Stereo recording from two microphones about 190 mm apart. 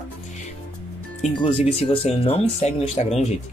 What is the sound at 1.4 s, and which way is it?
Speech, 30° left (ahead or behind).